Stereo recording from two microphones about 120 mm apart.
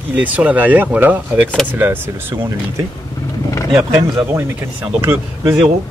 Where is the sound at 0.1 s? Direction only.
15° right (ahead or behind).